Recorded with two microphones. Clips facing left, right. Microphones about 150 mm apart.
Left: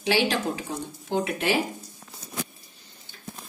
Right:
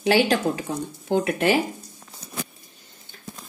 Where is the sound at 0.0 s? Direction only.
50° right (ahead or behind).